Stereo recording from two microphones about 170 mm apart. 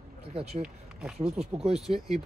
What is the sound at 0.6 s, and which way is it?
Speech, 5° right (ahead or behind).